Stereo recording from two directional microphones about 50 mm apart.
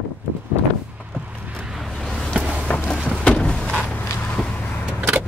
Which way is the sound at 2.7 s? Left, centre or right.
Left.